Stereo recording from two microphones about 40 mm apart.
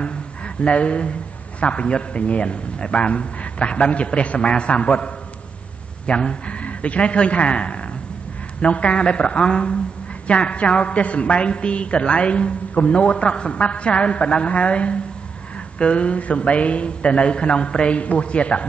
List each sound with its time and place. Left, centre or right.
0.6 s a woman's voice: left